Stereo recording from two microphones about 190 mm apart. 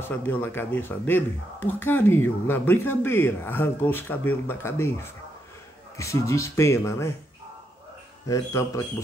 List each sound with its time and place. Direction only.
0.1 s speech: 10° left (ahead or behind)
8.3 s speech: 20° left (ahead or behind)